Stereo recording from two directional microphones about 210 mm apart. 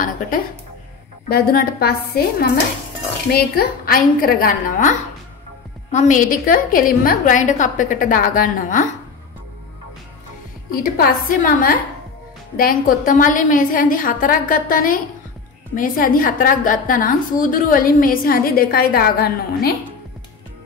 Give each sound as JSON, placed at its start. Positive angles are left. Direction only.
{"t": 1.3, "sound": "a woman's voice", "side_deg": 45}
{"t": 10.7, "sound": "a woman's voice", "side_deg": 45}